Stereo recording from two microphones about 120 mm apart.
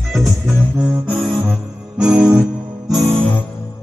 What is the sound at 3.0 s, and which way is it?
Music, 10° left (ahead or behind).